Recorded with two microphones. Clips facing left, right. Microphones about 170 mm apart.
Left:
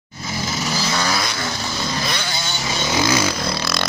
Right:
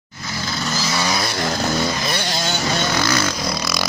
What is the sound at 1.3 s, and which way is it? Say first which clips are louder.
Vehicle: right 6 dB; 50° right (ahead or behind).